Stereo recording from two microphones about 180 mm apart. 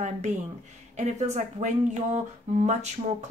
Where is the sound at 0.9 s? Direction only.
40° right (ahead or behind).